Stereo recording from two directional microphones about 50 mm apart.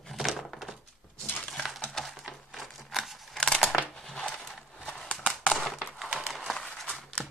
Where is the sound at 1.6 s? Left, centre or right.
Centre.